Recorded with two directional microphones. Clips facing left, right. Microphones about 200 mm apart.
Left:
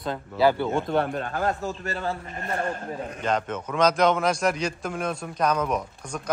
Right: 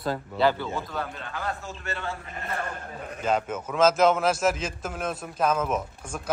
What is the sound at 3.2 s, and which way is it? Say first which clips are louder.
A man's voice: right 1 dB; 5° right (ahead or behind).